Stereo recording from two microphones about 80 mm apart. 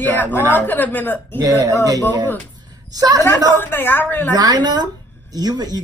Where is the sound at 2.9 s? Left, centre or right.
Right.